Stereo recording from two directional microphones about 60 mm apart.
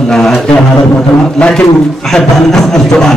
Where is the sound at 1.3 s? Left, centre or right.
Centre.